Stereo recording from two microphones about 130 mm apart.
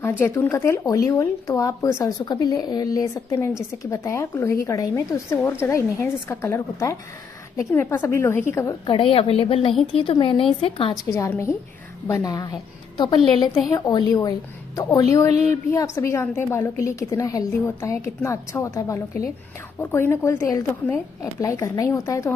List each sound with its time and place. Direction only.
0.2 s a woman's voice: 20° left (ahead or behind)
8.8 s a woman's voice: 40° left (ahead or behind)
11.1 s a woman's voice: 25° left (ahead or behind)